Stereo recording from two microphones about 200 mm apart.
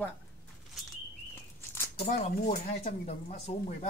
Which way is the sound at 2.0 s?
35° left (ahead or behind).